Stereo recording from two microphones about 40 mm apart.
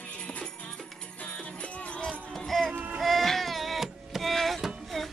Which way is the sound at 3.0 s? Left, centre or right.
Centre.